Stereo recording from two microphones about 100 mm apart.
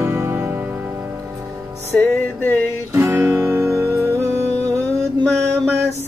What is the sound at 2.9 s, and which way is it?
Music, 30° right (ahead or behind).